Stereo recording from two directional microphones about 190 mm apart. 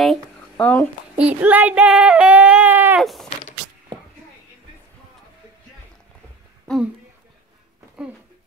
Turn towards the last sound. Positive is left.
turn(degrees=5)  # may be behind; listen again after turning